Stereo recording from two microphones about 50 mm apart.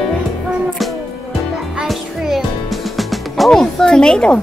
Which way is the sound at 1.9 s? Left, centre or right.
Centre.